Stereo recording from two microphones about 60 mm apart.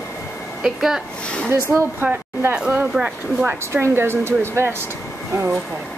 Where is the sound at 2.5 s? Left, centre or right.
Right.